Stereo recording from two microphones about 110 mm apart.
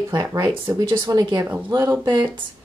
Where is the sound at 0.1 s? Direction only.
35° right (ahead or behind).